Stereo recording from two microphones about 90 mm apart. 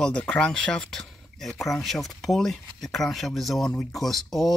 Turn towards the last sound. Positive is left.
turn(degrees=0)  # may be behind; listen again after turning